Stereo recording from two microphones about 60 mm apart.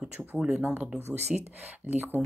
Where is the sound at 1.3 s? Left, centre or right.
Right.